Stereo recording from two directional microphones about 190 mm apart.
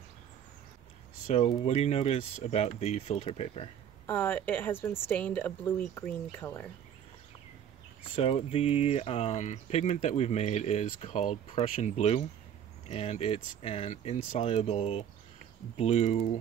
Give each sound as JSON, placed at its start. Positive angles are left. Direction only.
{"t": 1.2, "sound": "speech", "side_deg": 30}
{"t": 4.0, "sound": "a woman's voice", "side_deg": 10}
{"t": 8.2, "sound": "speech", "side_deg": 30}